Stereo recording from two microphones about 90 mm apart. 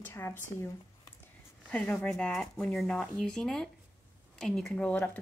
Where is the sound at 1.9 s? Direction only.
5° left (ahead or behind).